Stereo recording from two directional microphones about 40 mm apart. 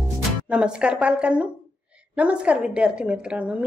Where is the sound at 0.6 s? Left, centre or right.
Right.